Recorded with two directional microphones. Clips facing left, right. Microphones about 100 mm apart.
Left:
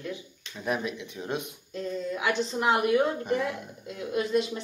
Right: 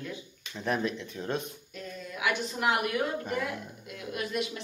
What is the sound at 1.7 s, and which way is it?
A woman's voice, 25° left (ahead or behind).